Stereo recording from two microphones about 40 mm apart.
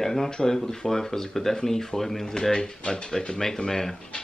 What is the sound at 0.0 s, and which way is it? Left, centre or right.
Speech, centre.